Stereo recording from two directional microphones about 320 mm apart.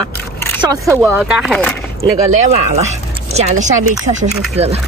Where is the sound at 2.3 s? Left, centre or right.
Right.